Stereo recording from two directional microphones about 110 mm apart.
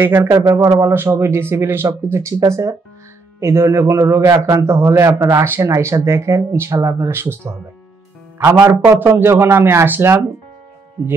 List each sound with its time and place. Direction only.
0.0 s a man's voice: 20° right (ahead or behind)
8.6 s a man's voice: 20° right (ahead or behind)